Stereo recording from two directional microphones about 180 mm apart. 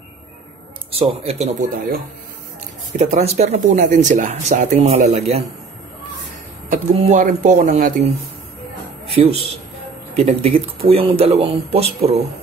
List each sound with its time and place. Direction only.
1.2 s speech: 35° right (ahead or behind)
3.0 s speech: 35° right (ahead or behind)
6.7 s speech: 45° right (ahead or behind)
9.1 s a man's voice: 30° right (ahead or behind)